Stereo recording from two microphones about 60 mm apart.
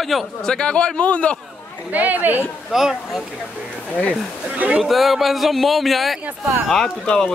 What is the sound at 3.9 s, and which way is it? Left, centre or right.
Speech, left.